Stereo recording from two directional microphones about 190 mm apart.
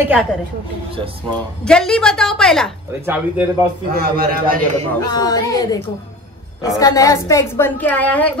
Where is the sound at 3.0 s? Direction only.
10° right (ahead or behind).